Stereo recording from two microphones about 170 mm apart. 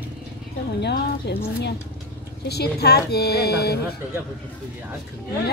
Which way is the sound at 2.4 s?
70° left (ahead or behind).